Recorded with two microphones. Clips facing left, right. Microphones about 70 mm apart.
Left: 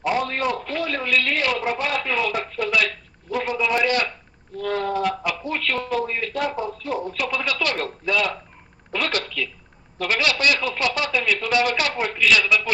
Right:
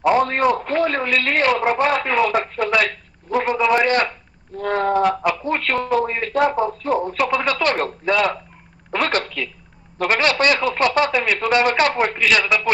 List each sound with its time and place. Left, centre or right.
0.0 s a man's voice: right